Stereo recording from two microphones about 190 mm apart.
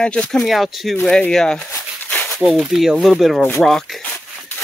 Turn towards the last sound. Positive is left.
turn(degrees=0)  # may be behind; listen again after turning